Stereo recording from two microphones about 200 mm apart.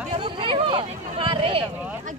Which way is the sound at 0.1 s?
25° right (ahead or behind).